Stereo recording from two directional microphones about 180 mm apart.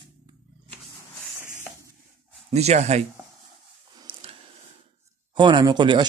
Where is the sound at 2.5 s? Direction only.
35° right (ahead or behind).